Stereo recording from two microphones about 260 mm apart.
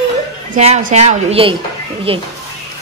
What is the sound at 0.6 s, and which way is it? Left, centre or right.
Speech, right.